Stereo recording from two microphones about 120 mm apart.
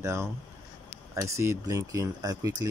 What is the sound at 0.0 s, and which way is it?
Speech, 25° right (ahead or behind).